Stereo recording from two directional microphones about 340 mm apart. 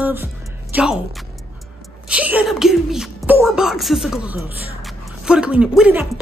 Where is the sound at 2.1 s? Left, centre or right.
Centre.